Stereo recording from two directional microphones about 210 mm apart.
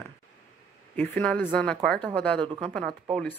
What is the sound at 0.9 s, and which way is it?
Speech, 5° left (ahead or behind).